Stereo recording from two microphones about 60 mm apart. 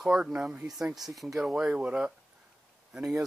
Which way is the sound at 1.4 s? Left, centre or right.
Centre.